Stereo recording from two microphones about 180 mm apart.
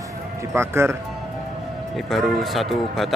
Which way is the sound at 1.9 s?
Centre (ahead or behind).